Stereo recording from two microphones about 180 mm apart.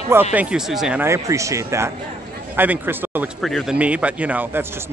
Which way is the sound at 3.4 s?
Centre (ahead or behind).